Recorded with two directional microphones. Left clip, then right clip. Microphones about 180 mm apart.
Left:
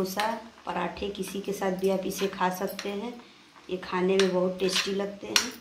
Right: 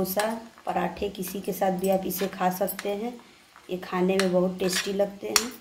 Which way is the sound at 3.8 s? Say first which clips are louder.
Even; 50° right (ahead or behind).